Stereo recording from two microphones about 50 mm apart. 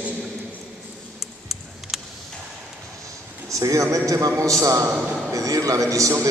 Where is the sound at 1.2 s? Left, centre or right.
Centre.